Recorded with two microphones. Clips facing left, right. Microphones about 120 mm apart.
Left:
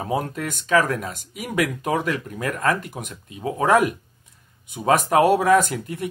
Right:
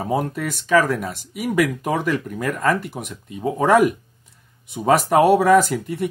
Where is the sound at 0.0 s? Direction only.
5° right (ahead or behind).